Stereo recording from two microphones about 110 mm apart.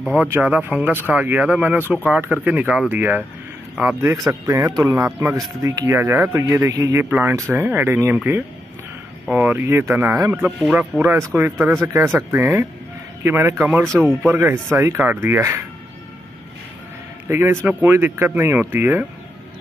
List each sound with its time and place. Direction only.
0.3 s speech: 15° right (ahead or behind)
7.1 s speech: 15° right (ahead or behind)
17.3 s speech: 20° right (ahead or behind)